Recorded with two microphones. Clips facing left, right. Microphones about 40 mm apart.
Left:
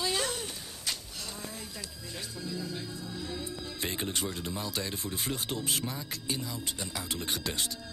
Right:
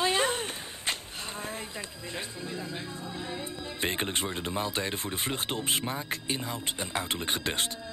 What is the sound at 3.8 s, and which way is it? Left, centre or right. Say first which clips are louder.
Speech: right 4 dB; right.